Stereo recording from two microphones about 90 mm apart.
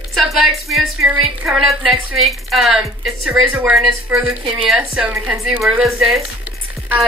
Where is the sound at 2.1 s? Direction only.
Centre (ahead or behind).